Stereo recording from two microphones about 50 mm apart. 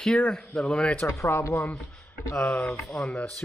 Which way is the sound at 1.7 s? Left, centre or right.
Left.